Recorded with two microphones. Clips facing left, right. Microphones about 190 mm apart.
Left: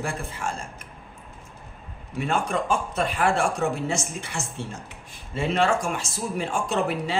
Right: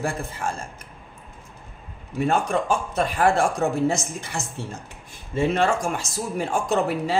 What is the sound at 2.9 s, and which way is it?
A man's voice, 35° right (ahead or behind).